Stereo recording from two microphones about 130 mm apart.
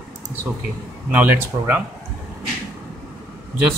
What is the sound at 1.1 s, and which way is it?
Mantra, 15° right (ahead or behind).